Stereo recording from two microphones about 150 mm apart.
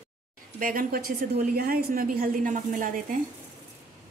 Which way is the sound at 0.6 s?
70° right (ahead or behind).